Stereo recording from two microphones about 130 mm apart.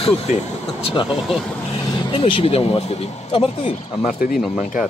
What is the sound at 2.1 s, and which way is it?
Speech, 45° left (ahead or behind).